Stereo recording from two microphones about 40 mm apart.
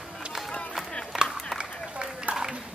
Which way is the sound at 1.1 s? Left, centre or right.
Right.